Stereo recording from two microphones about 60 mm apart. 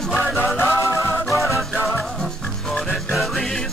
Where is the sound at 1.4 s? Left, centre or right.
Centre.